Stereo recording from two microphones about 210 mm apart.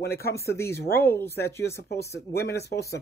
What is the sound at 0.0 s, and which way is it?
Speech, 50° left (ahead or behind).